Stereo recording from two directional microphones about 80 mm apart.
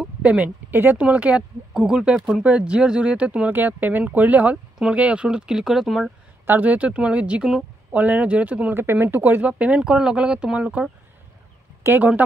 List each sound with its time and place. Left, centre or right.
0.0 s speech: centre
6.4 s speech: right
11.8 s speech: right